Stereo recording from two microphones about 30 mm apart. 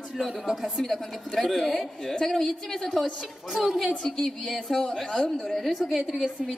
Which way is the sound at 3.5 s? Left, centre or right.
Centre.